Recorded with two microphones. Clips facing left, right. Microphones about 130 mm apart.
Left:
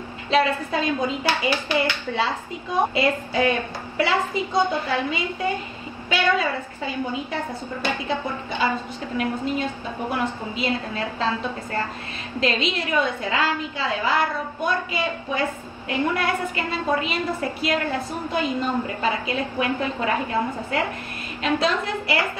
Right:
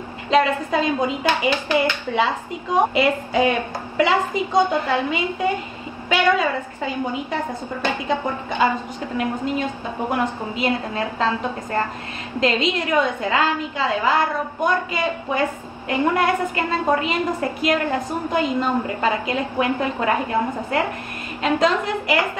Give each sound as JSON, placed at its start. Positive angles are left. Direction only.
{"t": 0.3, "sound": "a woman's voice", "side_deg": -20}